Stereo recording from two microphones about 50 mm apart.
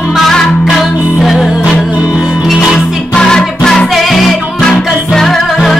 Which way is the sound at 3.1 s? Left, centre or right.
Centre.